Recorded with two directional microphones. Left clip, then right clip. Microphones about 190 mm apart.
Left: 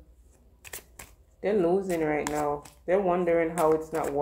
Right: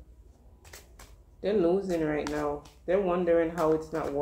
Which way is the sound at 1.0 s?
25° left (ahead or behind).